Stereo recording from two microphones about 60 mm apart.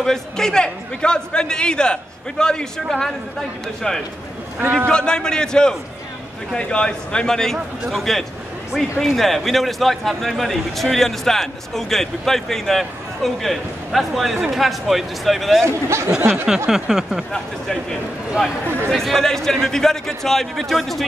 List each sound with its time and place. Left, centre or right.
0.0 s a man's voice: centre
7.5 s a man's voice: centre
15.6 s speech: right
16.2 s a sound: right
16.4 s a sound: centre
17.3 s a man's voice: centre